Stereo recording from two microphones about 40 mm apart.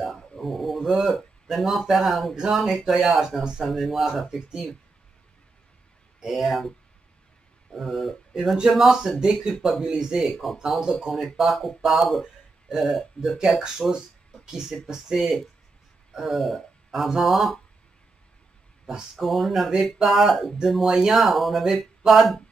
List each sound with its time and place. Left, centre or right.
0.0 s a sound: centre
0.7 s speech: centre
3.6 s speech: centre
6.2 s speech: centre
7.7 s speech: centre
9.2 s speech: centre
10.3 s speech: centre
13.4 s speech: centre
19.1 s speech: centre